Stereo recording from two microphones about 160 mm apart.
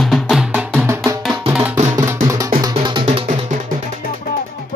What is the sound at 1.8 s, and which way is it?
Music, 25° right (ahead or behind).